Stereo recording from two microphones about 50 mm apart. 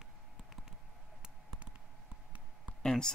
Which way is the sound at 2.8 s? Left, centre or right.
Centre.